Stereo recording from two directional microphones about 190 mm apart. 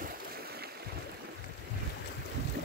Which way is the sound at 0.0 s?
50° right (ahead or behind).